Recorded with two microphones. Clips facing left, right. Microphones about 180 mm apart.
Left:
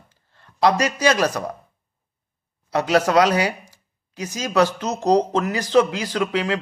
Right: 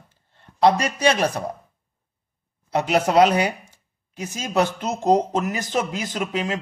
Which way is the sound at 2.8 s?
20° right (ahead or behind).